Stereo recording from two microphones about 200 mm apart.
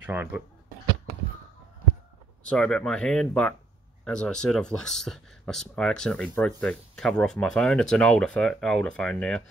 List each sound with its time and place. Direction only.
0.0 s speech: 10° right (ahead or behind)
2.5 s speech: 5° left (ahead or behind)